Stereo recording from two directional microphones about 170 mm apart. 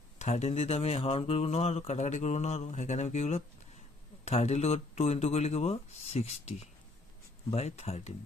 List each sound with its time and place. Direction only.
0.2 s speech: 40° left (ahead or behind)